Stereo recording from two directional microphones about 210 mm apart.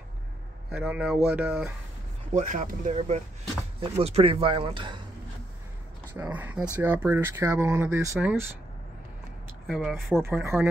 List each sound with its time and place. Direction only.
0.7 s speech: 5° right (ahead or behind)
2.3 s speech: 40° right (ahead or behind); by 5.0 s 20° right (ahead or behind)
6.1 s speech: 10° right (ahead or behind)
9.7 s speech: centre (ahead or behind)
10.2 s speech: 10° right (ahead or behind)